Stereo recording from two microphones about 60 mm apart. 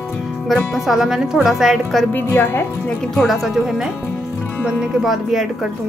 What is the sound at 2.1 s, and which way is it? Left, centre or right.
Speech, left.